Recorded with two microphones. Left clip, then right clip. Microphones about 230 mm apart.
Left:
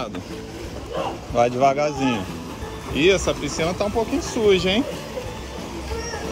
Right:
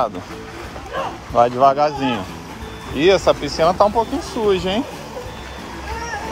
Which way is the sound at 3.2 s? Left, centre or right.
Right.